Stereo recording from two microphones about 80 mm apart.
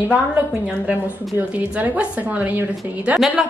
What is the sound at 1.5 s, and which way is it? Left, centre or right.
A woman's voice, centre.